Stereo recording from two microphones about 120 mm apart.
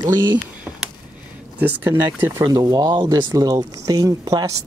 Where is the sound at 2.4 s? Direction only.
30° right (ahead or behind).